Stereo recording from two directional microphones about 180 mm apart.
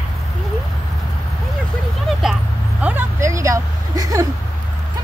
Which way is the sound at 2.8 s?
10° right (ahead or behind).